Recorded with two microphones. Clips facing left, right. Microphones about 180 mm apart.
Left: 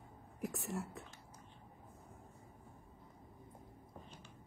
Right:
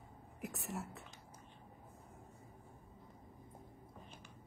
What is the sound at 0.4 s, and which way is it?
Speech, centre (ahead or behind).